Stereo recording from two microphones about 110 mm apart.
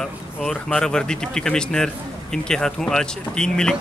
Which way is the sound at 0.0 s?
5° left (ahead or behind).